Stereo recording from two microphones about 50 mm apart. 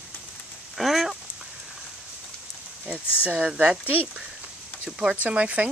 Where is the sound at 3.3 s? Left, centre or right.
Right.